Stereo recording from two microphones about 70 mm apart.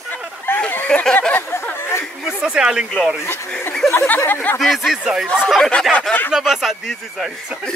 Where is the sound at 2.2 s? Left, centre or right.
Centre.